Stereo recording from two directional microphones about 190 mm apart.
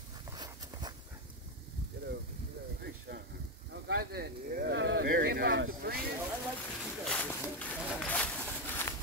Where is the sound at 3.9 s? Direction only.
55° right (ahead or behind).